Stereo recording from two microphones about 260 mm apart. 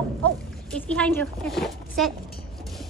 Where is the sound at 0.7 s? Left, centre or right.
Centre.